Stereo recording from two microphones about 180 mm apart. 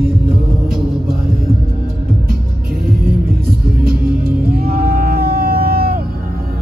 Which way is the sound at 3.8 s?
55° right (ahead or behind).